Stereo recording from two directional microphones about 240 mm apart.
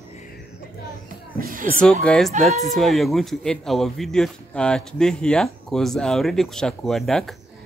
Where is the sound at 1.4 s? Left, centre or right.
Right.